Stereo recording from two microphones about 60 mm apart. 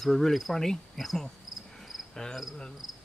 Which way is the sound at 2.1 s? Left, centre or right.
Centre.